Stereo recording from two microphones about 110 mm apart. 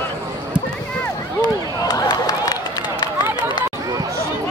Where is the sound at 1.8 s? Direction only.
35° left (ahead or behind).